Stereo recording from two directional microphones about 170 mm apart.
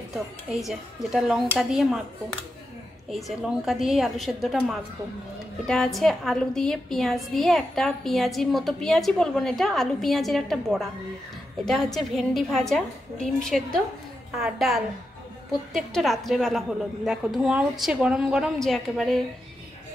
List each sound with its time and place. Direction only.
0.1 s a woman's voice: centre (ahead or behind)
3.1 s a woman's voice: centre (ahead or behind)